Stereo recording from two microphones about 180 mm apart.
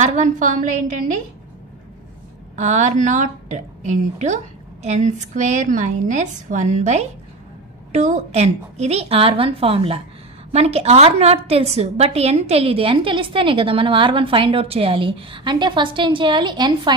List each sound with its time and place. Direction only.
0.0 s a woman's voice: 45° right (ahead or behind)
2.5 s a woman's voice: 40° right (ahead or behind); by 16.9 s 25° right (ahead or behind)